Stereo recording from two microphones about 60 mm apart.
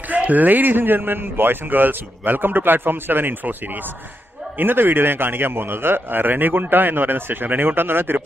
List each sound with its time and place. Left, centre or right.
0.1 s a man's voice: right